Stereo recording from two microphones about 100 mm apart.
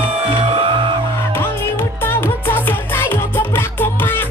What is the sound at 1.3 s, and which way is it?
Music, 25° left (ahead or behind).